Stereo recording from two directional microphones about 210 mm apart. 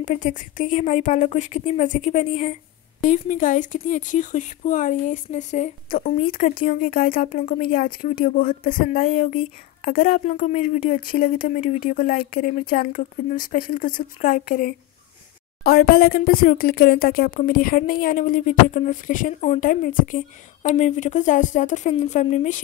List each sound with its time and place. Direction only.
0.0 s speech: 35° left (ahead or behind)